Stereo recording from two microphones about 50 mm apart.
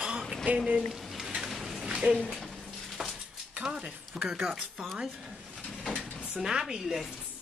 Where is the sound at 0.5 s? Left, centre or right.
Right.